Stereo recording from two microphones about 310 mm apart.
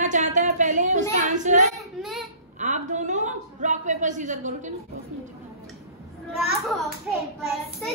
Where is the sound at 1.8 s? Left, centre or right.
Centre.